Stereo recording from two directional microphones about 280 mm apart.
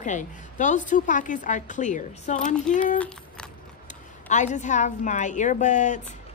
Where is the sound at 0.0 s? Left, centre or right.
Left.